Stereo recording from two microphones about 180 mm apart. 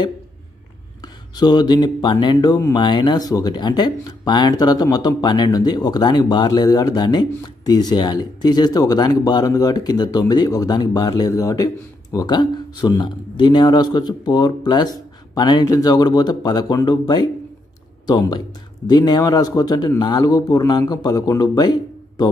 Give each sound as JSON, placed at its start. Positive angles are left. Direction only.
{"t": 1.0, "sound": "speech", "side_deg": 25}